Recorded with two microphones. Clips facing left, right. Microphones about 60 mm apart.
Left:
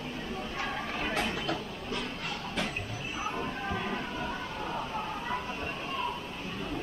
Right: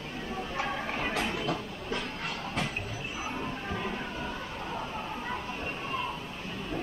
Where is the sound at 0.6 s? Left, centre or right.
Right.